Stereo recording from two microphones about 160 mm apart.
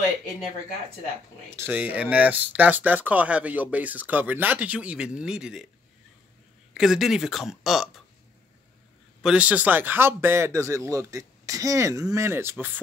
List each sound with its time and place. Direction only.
1.5 s speech: 10° right (ahead or behind)
6.7 s speech: centre (ahead or behind)
9.2 s speech: 5° right (ahead or behind)